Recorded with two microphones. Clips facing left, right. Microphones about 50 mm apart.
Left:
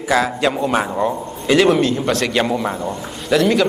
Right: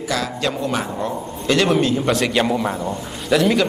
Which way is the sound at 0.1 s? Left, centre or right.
Left.